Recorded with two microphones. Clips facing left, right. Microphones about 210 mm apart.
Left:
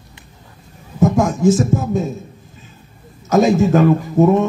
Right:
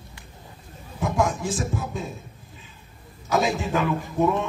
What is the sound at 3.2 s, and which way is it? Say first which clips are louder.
A man's voice: left 11 dB; 45° left (ahead or behind).